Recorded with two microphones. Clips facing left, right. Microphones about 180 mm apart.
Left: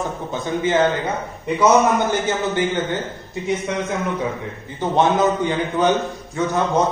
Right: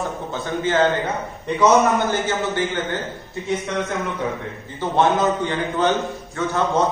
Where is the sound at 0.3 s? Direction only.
15° left (ahead or behind).